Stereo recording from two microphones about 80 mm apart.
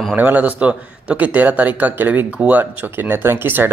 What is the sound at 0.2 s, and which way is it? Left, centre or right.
A man's voice, centre.